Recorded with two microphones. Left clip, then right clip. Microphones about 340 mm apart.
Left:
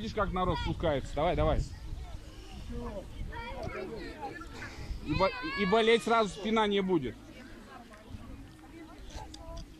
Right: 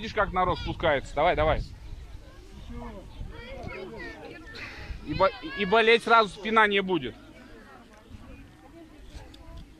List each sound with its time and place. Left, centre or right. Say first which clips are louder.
0.0 s a man's voice: right 6 dB; right
5.2 s a man's voice: right 5 dB; right